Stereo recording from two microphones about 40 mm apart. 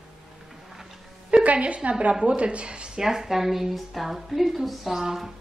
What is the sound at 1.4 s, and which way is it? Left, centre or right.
A woman's voice, right.